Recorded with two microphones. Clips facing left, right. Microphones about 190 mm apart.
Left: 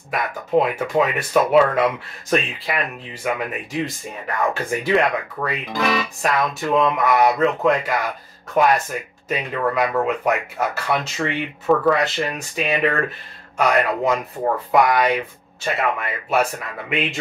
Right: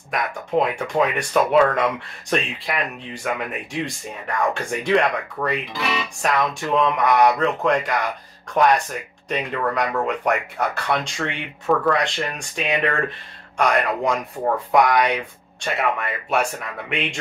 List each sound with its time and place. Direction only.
0.1 s speech: 5° left (ahead or behind)
5.7 s speech: 45° left (ahead or behind)
6.2 s speech: 5° left (ahead or behind)